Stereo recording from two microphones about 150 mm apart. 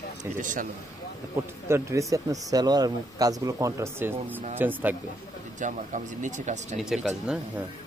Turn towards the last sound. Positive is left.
turn(degrees=-5)  # may be behind; listen again after turning